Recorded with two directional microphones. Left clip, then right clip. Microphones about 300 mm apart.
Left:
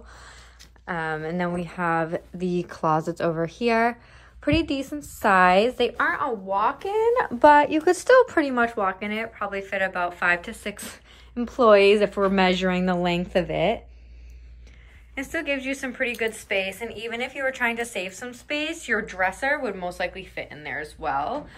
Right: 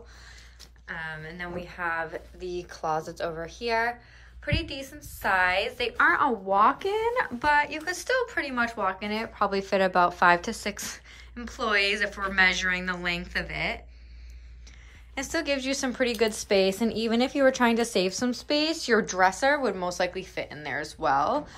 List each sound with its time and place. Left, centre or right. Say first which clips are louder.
0.8 s a woman's voice: left 8 dB; centre
15.1 s speech: left 1 dB; centre
18.9 s speech: right 2 dB; centre